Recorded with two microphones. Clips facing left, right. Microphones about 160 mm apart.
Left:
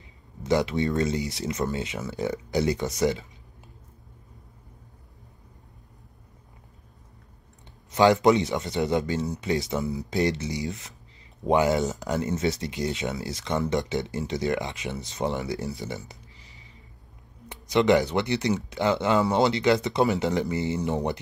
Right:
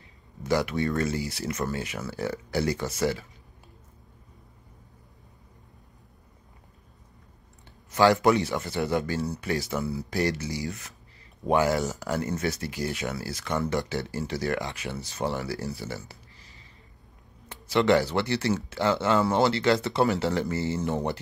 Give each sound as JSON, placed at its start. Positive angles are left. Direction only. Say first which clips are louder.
{"t": 0.4, "sound": "speech", "louder": "left 2 dB", "side_deg": 20}
{"t": 7.9, "sound": "speech", "louder": "left 2 dB", "side_deg": 20}